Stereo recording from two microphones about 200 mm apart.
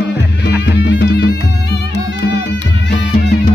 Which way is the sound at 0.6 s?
60° left (ahead or behind).